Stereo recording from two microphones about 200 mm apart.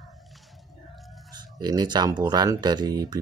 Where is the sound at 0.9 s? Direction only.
Centre (ahead or behind).